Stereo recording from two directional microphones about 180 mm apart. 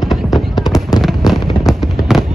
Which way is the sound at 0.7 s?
20° left (ahead or behind).